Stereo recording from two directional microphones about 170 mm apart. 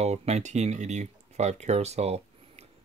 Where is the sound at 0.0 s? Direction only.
40° right (ahead or behind).